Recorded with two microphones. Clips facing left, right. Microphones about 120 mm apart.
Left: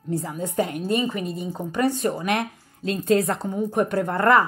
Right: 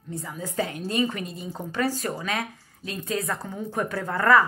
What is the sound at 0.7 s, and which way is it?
Speech, 5° left (ahead or behind).